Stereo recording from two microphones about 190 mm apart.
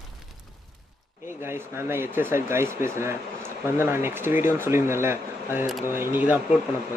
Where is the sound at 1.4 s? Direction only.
10° right (ahead or behind).